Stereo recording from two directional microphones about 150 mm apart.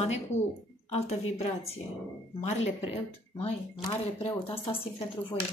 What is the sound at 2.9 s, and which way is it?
Speech, 40° left (ahead or behind).